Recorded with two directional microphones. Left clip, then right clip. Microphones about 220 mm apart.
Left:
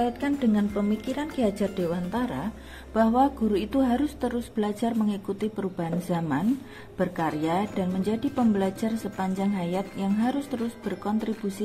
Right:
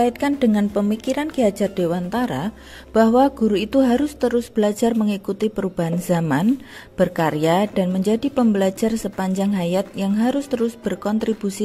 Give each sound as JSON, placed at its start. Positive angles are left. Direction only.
{"t": 0.0, "sound": "a woman's voice", "side_deg": -40}